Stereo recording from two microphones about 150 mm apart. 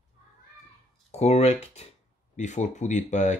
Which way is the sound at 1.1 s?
45° left (ahead or behind).